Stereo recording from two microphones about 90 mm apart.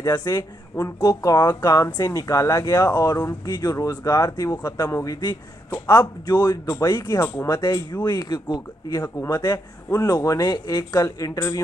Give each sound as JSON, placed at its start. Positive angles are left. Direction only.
{"t": 0.0, "sound": "a man's voice", "side_deg": 40}
{"t": 6.9, "sound": "speech", "side_deg": 30}
{"t": 7.4, "sound": "a man's voice", "side_deg": 40}